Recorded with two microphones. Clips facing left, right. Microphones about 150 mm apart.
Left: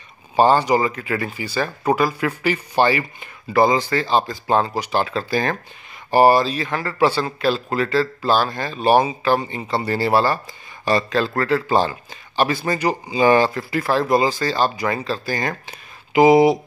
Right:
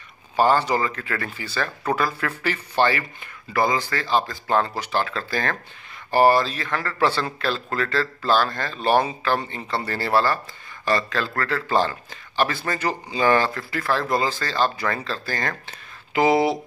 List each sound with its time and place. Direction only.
0.4 s speech: 20° left (ahead or behind)